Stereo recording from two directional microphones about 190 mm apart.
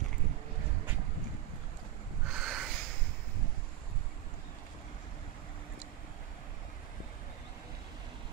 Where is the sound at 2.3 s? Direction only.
Centre (ahead or behind).